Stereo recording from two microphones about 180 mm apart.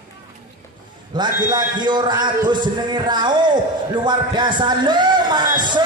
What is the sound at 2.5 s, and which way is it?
A man's voice, 25° right (ahead or behind).